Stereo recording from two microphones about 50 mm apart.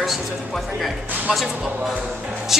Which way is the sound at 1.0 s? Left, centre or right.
Right.